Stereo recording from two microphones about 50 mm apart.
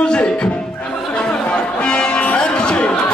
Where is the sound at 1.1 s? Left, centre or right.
Centre.